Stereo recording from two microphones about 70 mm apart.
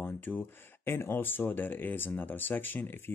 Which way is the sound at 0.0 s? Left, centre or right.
Left.